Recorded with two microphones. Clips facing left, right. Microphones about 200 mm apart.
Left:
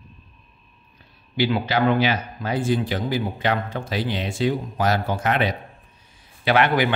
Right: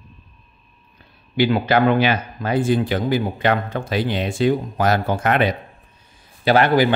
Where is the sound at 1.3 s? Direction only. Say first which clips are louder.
Right 5 dB; 55° right (ahead or behind).